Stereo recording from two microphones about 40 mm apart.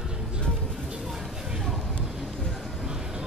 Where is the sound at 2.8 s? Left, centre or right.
Centre.